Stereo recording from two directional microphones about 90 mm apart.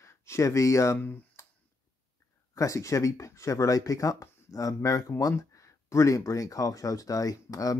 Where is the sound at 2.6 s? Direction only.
35° left (ahead or behind).